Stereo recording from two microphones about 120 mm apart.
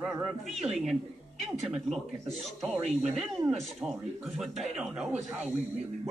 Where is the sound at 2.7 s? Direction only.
65° right (ahead or behind).